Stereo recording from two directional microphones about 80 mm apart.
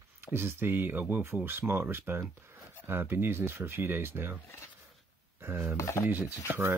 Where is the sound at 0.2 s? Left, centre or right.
Right.